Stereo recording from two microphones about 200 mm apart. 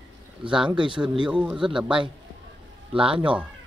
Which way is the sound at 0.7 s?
25° right (ahead or behind).